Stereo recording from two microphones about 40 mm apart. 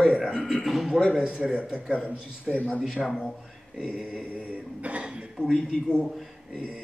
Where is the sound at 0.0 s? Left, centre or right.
Centre.